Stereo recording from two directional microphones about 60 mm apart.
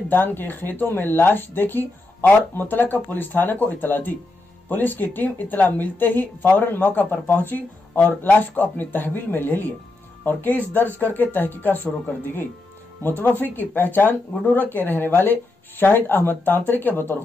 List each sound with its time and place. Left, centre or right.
0.1 s speech: left